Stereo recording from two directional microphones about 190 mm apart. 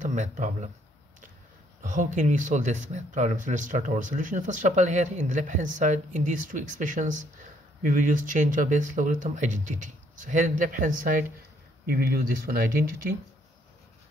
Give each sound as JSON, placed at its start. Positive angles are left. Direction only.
{"t": 0.0, "sound": "speech", "side_deg": -40}
{"t": 1.8, "sound": "speech", "side_deg": -40}